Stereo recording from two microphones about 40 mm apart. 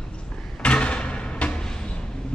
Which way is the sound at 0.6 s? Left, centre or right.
Left.